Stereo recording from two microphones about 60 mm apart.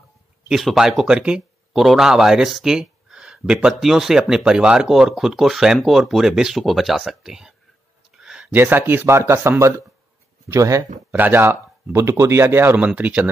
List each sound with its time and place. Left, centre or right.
0.7 s speech: centre
8.2 s a sound: centre
8.5 s a man's voice: right
11.1 s speech: right
11.9 s speech: right
12.7 s speech: right